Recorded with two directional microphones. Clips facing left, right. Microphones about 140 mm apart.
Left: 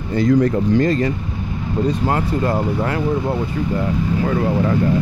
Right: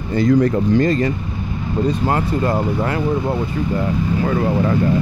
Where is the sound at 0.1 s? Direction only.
45° right (ahead or behind).